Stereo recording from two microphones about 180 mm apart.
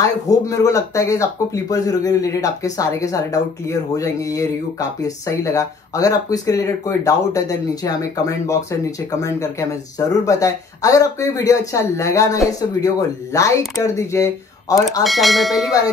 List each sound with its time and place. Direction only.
0.0 s speech: 20° left (ahead or behind)
15.0 s speech: centre (ahead or behind)